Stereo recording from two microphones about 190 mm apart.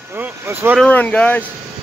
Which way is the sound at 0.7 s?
5° left (ahead or behind).